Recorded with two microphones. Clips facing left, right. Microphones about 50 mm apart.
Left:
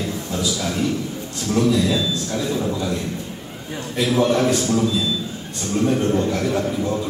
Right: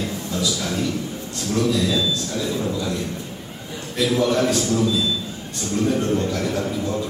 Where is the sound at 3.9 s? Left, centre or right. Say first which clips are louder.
Left 1 dB; left.